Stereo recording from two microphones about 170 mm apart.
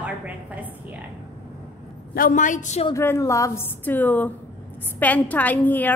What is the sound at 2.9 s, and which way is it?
A woman's voice, 15° left (ahead or behind).